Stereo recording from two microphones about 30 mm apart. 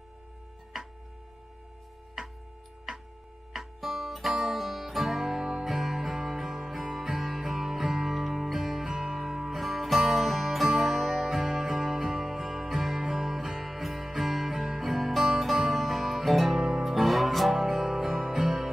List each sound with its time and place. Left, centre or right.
3.5 s music: centre
8.9 s music: centre
9.6 s music: centre
16.5 s music: centre
16.8 s music: centre